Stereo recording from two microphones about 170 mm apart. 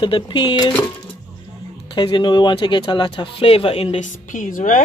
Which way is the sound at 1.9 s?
30° left (ahead or behind).